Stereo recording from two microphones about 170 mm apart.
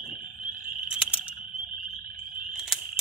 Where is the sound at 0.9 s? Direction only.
5° right (ahead or behind).